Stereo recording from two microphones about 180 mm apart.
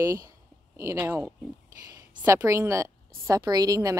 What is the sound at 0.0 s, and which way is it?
A woman's voice, 15° right (ahead or behind).